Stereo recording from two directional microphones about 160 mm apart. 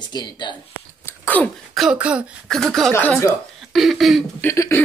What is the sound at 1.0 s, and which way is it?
Throat clearing, 10° left (ahead or behind).